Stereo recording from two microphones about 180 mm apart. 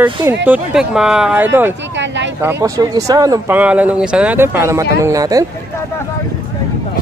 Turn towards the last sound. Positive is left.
turn(degrees=-20)  # may be behind; listen again after turning